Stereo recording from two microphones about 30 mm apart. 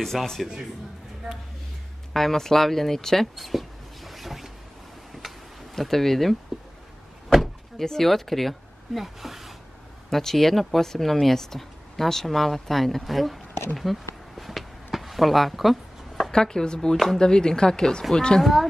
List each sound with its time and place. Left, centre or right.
0.1 s speech: centre
2.1 s speech: centre
3.3 s writing: centre
5.1 s a sound: centre
5.8 s speech: centre
7.8 s speech: centre
8.1 s speech: centre
10.0 s speech: centre
13.7 s a sound: centre
16.3 s speech: left
18.4 s speech: centre